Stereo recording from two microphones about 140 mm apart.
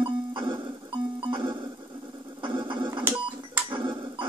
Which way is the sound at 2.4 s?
35° right (ahead or behind).